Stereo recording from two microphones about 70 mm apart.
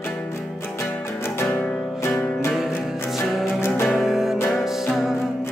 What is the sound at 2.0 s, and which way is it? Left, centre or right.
Music, left.